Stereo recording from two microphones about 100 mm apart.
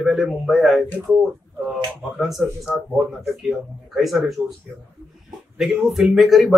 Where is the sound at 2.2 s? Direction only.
Centre (ahead or behind).